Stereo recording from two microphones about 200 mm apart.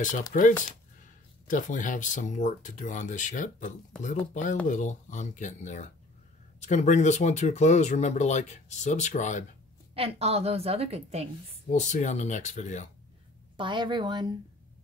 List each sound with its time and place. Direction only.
0.3 s speech: 40° left (ahead or behind)
9.9 s a woman's voice: 30° right (ahead or behind)
11.7 s speech: 35° left (ahead or behind)
13.6 s a woman's voice: 25° right (ahead or behind)